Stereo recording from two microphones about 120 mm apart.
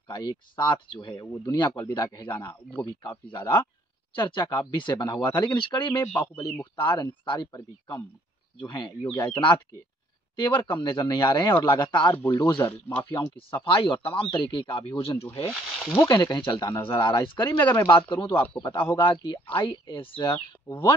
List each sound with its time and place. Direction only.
0.1 s speech: 40° left (ahead or behind)
12.6 s speech: 20° left (ahead or behind)
13.5 s speech: 45° left (ahead or behind)
15.5 s speech: centre (ahead or behind)
16.0 s speech: 35° left (ahead or behind)
20.7 s speech: 20° left (ahead or behind)